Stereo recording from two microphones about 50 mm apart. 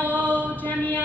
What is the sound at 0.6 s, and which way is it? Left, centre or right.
Speech, left.